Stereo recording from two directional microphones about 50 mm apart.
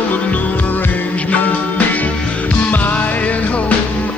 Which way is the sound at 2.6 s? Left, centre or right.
Left.